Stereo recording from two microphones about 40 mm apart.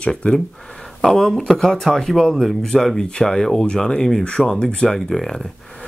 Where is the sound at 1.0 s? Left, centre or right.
Centre.